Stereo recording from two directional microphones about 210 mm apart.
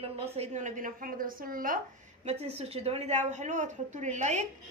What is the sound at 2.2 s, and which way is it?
A woman's voice, 30° right (ahead or behind).